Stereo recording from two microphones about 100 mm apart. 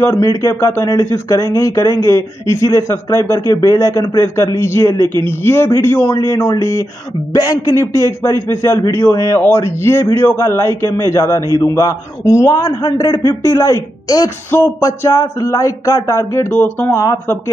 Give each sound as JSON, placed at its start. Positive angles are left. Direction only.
{"t": 0.0, "sound": "speech", "side_deg": 30}
{"t": 16.9, "sound": "speech", "side_deg": 30}